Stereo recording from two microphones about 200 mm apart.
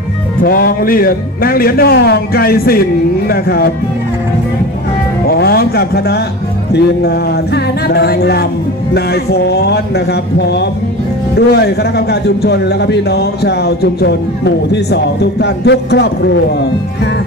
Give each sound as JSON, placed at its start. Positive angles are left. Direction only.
{"t": 0.4, "sound": "speech", "side_deg": 45}
{"t": 5.3, "sound": "speech", "side_deg": 50}
{"t": 11.3, "sound": "a man's voice", "side_deg": 55}